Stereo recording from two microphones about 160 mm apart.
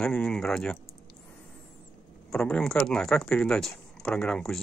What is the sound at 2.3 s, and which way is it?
Speech, 5° left (ahead or behind).